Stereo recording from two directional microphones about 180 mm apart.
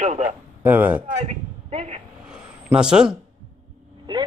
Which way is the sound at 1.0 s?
35° right (ahead or behind).